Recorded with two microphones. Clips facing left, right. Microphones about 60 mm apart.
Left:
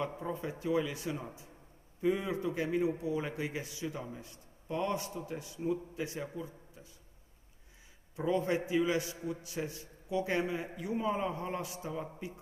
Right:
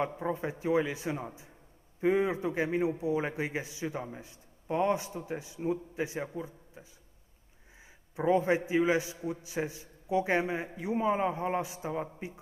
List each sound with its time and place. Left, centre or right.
0.2 s a man's voice: right
8.2 s a man's voice: right